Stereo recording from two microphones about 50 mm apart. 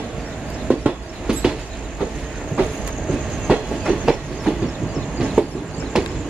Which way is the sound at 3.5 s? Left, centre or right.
Centre.